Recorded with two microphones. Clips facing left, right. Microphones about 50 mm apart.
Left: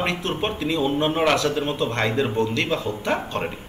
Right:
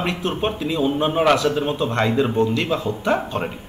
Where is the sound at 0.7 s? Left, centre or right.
Centre.